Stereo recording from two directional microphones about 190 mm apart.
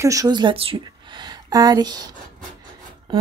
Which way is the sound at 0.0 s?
15° right (ahead or behind).